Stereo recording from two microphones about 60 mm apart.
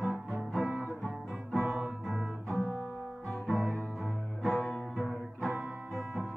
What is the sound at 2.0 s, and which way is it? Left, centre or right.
Music, centre.